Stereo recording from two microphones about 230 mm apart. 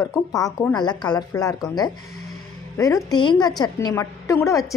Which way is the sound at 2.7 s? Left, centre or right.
Centre.